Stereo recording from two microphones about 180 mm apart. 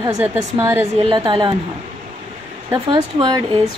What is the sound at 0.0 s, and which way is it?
Speech, 15° right (ahead or behind).